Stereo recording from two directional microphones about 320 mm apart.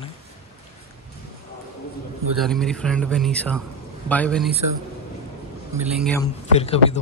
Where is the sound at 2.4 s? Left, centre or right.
Centre.